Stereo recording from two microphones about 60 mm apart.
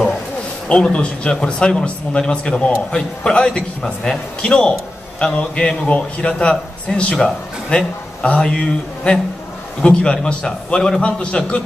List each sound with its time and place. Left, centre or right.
0.7 s speech: centre